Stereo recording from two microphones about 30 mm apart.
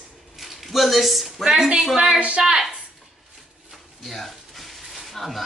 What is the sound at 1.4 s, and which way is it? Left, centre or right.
A woman's voice, centre.